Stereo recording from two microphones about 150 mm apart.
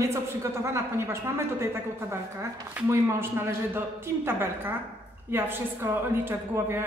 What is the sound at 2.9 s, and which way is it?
A woman's voice, 15° right (ahead or behind).